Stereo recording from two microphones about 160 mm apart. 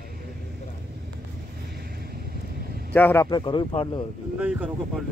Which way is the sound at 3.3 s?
30° left (ahead or behind).